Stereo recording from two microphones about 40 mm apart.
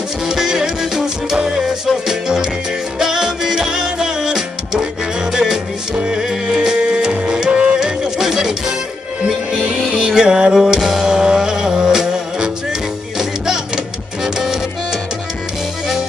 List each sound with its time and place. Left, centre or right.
0.3 s music: centre
9.8 s music: centre
14.2 s music: centre